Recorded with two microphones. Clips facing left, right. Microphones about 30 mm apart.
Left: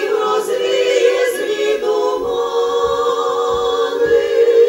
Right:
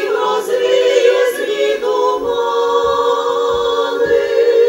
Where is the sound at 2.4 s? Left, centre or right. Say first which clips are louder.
Right 2 dB; centre.